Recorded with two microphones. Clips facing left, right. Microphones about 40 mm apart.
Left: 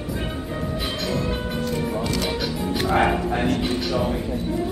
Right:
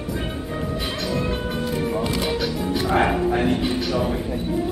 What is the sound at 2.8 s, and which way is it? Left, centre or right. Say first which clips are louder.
Music: even; centre.